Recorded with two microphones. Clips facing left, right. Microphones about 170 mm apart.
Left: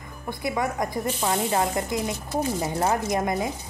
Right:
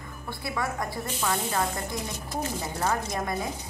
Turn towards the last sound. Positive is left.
turn(degrees=20)  # may be behind; listen again after turning